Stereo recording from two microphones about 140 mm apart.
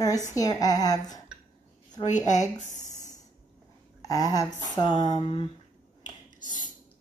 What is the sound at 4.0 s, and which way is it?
Speech, 25° left (ahead or behind).